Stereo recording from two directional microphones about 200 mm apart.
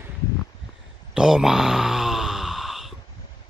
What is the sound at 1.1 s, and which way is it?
Groan, 5° right (ahead or behind).